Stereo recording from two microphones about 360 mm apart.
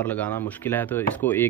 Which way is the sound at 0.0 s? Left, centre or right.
Centre.